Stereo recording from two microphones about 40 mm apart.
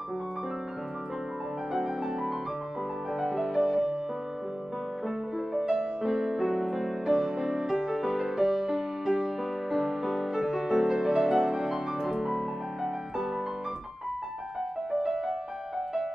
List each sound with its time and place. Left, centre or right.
1.7 s music: centre
5.0 s music: centre
5.7 s music: centre
6.1 s music: centre
14.9 s music: centre